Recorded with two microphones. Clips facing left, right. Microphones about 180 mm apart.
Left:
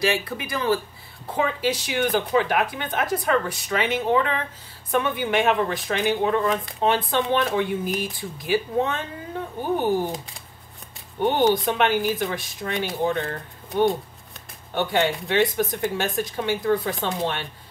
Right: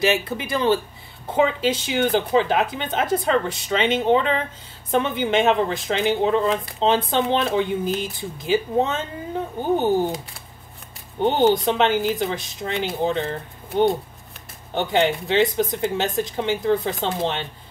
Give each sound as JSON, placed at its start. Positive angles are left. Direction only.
{"t": 0.0, "sound": "speech", "side_deg": -25}
{"t": 11.1, "sound": "speech", "side_deg": -20}
{"t": 14.7, "sound": "speech", "side_deg": -20}